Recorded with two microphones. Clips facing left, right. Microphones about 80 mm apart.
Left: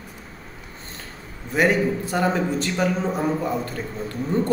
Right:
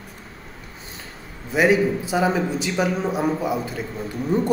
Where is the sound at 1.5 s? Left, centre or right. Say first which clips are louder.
Right 2 dB; centre.